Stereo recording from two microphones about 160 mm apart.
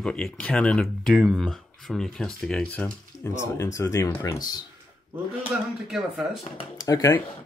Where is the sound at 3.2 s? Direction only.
15° left (ahead or behind).